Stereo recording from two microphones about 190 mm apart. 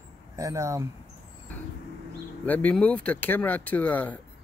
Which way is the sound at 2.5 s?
10° left (ahead or behind).